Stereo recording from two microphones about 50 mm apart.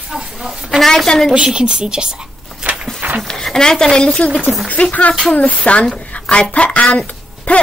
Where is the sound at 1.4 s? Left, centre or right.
Centre.